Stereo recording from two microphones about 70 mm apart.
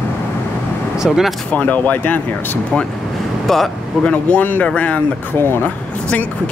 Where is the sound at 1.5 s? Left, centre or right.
Left.